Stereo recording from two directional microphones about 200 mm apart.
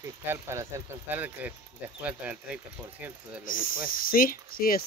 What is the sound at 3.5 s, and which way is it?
Speech, 45° left (ahead or behind).